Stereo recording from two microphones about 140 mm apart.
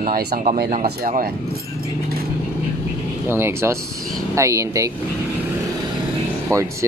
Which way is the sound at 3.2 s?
15° right (ahead or behind).